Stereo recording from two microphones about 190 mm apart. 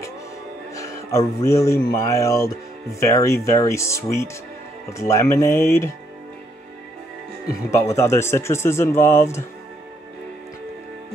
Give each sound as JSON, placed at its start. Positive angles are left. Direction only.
{"t": 0.7, "sound": "speech", "side_deg": 15}
{"t": 7.8, "sound": "speech", "side_deg": 15}